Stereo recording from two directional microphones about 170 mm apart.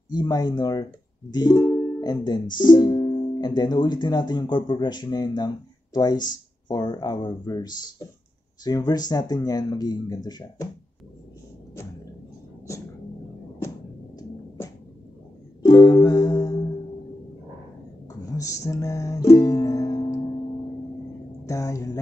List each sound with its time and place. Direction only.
0.1 s speech: 25° left (ahead or behind)
15.6 s music: 20° left (ahead or behind)
18.3 s music: 20° left (ahead or behind)
21.5 s mantra: 20° left (ahead or behind)